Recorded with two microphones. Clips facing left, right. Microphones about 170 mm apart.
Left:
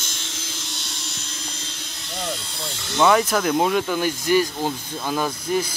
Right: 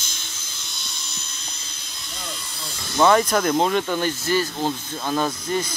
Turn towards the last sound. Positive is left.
turn(degrees=10)  # may be behind; listen again after turning